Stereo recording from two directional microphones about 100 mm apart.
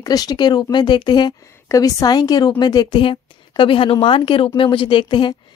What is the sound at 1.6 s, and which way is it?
Speech, 35° left (ahead or behind).